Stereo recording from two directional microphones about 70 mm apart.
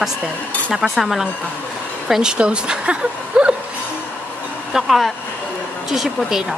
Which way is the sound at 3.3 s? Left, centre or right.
Centre.